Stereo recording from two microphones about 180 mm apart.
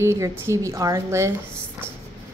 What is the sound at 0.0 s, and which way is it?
A woman's voice, 15° right (ahead or behind).